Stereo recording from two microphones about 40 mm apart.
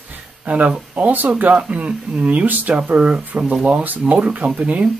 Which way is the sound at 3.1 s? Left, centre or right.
Right.